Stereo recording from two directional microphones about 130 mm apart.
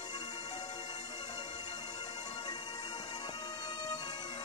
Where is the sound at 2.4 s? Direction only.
35° left (ahead or behind).